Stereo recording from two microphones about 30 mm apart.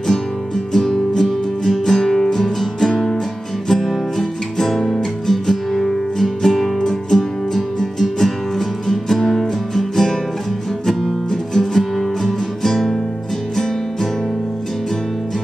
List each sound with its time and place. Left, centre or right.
0.7 s music: centre